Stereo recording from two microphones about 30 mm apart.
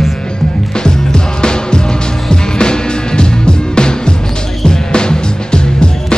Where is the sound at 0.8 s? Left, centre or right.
Left.